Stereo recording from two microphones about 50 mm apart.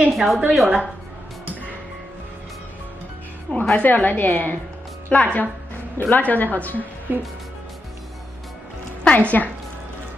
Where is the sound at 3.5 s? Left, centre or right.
Left.